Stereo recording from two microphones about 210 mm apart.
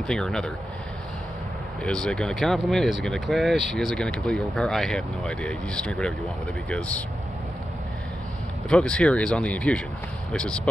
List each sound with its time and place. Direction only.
0.0 s speech: 5° left (ahead or behind)
1.8 s speech: 5° left (ahead or behind)
8.6 s speech: 5° left (ahead or behind)